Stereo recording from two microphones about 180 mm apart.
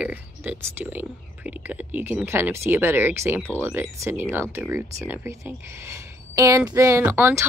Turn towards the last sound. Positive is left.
turn(degrees=-10)  # may be behind; listen again after turning